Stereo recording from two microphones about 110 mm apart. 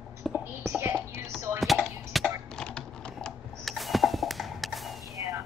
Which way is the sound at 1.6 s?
Centre (ahead or behind).